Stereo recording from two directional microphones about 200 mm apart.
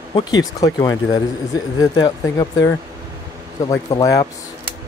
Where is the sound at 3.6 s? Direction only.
20° left (ahead or behind).